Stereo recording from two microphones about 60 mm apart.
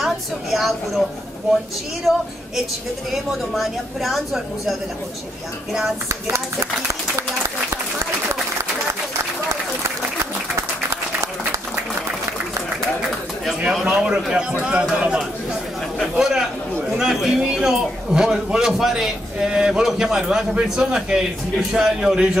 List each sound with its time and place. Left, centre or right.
0.0 s a woman's voice: centre
2.1 s a woman's voice: centre
3.3 s a woman's voice: centre
13.8 s a man's voice: centre